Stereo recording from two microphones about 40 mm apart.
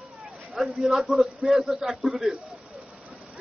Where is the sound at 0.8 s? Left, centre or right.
Centre.